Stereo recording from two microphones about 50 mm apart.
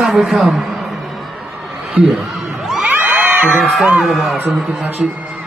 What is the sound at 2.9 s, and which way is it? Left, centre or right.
Music, right.